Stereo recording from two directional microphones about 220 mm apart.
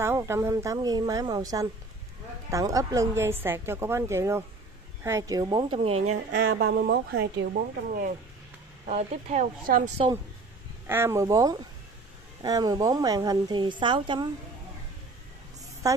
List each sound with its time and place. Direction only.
0.0 s a woman's voice: 10° right (ahead or behind)
6.4 s speech: 50° right (ahead or behind)
8.8 s speech: 30° right (ahead or behind)
10.9 s a woman's voice: 10° right (ahead or behind)